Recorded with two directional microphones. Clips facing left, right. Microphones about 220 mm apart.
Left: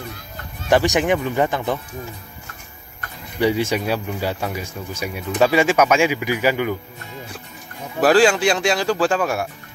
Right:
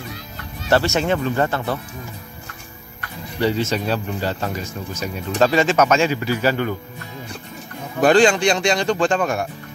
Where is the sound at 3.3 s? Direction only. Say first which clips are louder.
Left 1 dB; 15° left (ahead or behind).